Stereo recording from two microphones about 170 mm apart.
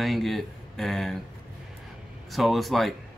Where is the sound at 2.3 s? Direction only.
Centre (ahead or behind).